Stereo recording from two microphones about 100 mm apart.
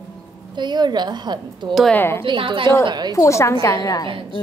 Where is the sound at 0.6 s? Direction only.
45° right (ahead or behind).